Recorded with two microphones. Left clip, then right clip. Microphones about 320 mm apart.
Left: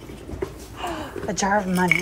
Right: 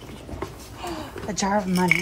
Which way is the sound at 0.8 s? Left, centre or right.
Centre.